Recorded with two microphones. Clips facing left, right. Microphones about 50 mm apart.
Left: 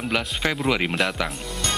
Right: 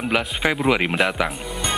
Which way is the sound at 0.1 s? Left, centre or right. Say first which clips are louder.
Right 3 dB; centre.